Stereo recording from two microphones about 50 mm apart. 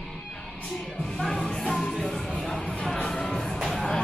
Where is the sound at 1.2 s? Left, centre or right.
Centre.